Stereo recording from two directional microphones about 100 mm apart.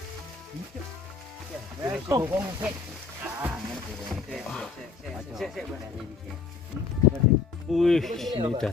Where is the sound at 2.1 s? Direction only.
25° right (ahead or behind).